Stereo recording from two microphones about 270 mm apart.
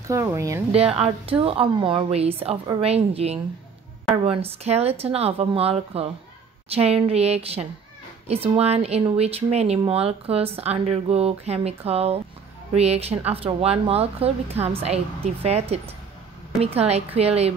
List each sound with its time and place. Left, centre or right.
0.1 s speech: centre